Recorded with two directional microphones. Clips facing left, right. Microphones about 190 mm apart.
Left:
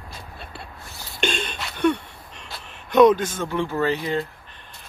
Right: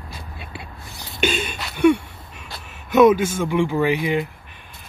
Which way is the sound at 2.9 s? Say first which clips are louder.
Right 1 dB; 5° right (ahead or behind).